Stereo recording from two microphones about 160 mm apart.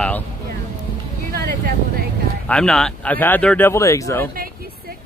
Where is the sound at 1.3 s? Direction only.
75° right (ahead or behind).